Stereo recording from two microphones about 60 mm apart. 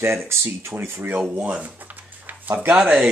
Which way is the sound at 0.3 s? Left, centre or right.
Right.